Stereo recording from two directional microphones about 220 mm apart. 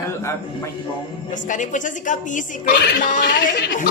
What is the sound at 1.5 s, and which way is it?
Speech, 35° left (ahead or behind).